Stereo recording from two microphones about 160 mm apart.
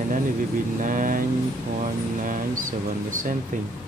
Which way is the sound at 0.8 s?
60° right (ahead or behind).